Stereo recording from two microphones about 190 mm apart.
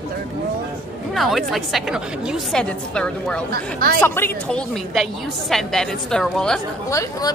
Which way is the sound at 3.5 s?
50° right (ahead or behind).